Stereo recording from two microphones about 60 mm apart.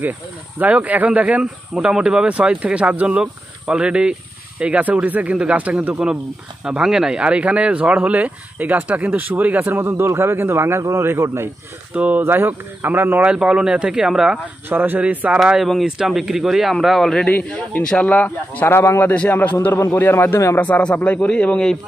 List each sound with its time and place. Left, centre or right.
0.6 s speech: right
1.4 s speech: centre
6.6 s a man's voice: centre; by 11.2 s right
11.9 s speech: right
12.2 s speech: right
13.2 s speech: centre
14.7 s speech: right
15.3 s speech: centre
17.5 s a man's voice: centre
18.7 s a man's voice: left
19.1 s a man's voice: left
20.5 s a man's voice: left